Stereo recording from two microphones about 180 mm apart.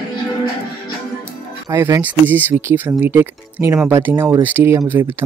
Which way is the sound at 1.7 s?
15° right (ahead or behind).